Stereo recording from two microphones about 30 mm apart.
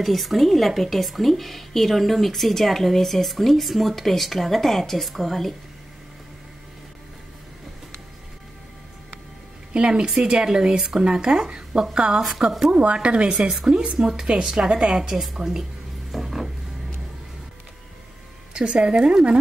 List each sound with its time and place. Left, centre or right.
0.0 s a woman's voice: centre
9.7 s a woman's voice: right
12.4 s a woman's voice: right; by 15.6 s centre
16.1 s a sound: centre
18.5 s a woman's voice: right